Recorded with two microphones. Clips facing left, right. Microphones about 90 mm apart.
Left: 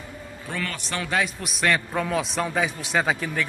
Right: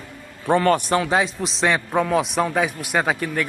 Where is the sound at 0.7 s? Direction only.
45° right (ahead or behind).